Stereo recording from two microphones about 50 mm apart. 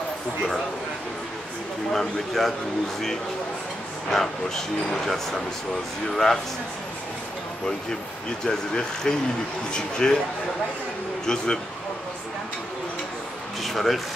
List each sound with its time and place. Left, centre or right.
1.9 s speech: centre
4.1 s speech: centre
8.5 s speech: centre
11.2 s speech: centre
13.6 s speech: centre